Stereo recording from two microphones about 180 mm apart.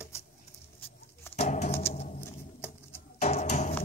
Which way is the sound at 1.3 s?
40° left (ahead or behind).